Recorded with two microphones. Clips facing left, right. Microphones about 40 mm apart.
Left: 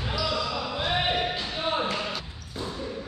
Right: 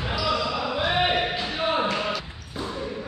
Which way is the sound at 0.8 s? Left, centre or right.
Centre.